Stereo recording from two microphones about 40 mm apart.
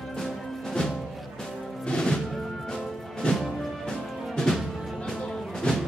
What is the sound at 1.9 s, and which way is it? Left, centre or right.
Music, left.